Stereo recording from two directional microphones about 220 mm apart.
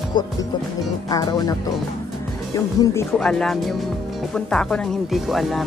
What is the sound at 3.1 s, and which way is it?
Speech, centre (ahead or behind).